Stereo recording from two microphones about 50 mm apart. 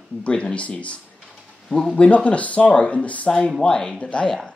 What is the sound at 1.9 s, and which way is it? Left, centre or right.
Speech, left.